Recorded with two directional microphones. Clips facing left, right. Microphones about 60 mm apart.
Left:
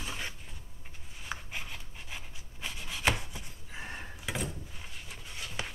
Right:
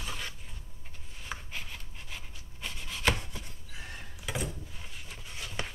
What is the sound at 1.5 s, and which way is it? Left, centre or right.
Chopping, centre.